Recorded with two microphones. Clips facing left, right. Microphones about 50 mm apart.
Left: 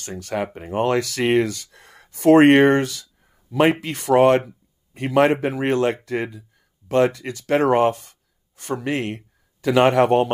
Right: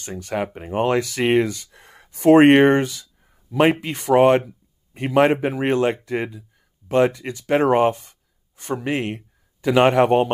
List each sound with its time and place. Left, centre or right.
0.2 s speech: centre
3.2 s a sound: centre
3.8 s speech: centre